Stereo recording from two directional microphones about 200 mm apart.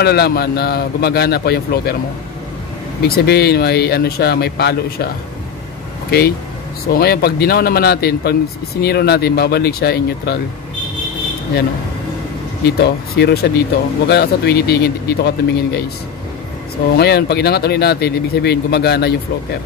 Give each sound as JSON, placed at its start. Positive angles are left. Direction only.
{"t": 0.0, "sound": "speech", "side_deg": 50}
{"t": 3.1, "sound": "speech", "side_deg": 55}
{"t": 12.6, "sound": "speech", "side_deg": 55}
{"t": 16.9, "sound": "speech", "side_deg": 55}